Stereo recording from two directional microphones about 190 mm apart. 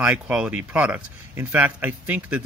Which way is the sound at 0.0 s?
5° right (ahead or behind).